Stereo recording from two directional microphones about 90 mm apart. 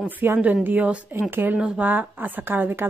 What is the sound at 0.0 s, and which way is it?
A woman's voice, 20° right (ahead or behind).